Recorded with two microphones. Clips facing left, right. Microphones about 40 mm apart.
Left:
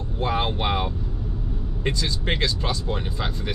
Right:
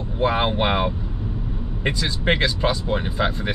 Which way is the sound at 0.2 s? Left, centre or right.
Right.